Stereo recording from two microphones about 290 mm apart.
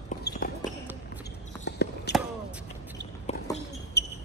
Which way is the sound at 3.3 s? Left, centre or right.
Left.